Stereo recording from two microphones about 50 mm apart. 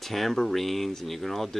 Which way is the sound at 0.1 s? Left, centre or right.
Centre.